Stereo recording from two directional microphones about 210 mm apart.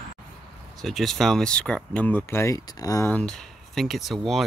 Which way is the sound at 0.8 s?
Centre (ahead or behind).